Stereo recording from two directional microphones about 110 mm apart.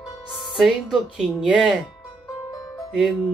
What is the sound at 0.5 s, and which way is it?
Speech, centre (ahead or behind).